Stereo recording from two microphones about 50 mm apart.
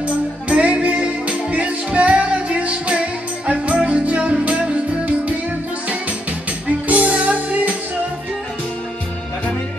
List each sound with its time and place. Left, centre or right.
0.5 s music: right
6.9 s music: right